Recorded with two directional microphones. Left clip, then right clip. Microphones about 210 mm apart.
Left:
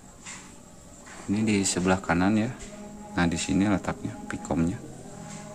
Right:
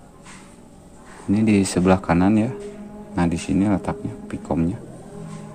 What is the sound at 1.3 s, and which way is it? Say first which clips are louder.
Speech: right 7 dB; 20° right (ahead or behind).